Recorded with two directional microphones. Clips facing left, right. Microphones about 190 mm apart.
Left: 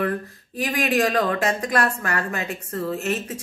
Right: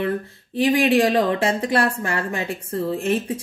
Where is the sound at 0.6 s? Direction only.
25° right (ahead or behind).